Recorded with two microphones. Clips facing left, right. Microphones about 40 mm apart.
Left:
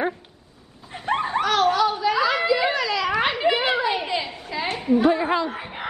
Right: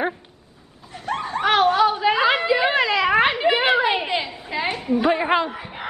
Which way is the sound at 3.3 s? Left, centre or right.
Centre.